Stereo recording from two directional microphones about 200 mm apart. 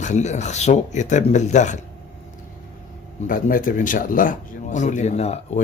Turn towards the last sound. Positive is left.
turn(degrees=35)  # may be behind; listen again after turning